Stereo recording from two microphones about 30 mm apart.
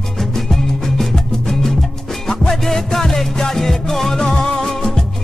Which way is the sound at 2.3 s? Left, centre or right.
Centre.